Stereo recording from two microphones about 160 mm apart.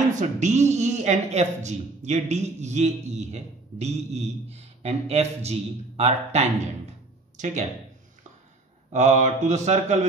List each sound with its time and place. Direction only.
0.1 s speech: 50° right (ahead or behind)
8.9 s speech: 45° right (ahead or behind)